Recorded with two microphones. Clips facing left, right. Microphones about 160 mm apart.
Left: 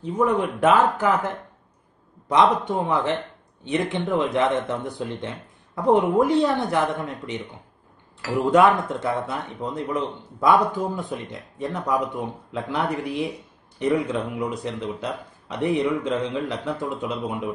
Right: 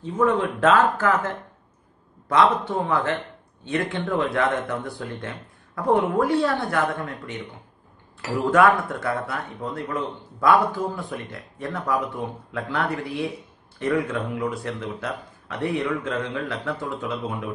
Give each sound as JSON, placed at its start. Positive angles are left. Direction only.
{"t": 0.0, "sound": "speech", "side_deg": 15}